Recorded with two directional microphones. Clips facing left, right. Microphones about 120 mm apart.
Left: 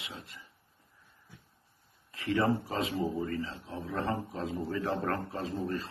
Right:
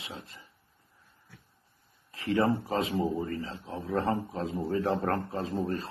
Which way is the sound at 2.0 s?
35° right (ahead or behind).